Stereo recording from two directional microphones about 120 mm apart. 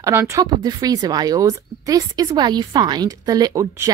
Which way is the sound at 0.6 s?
30° right (ahead or behind).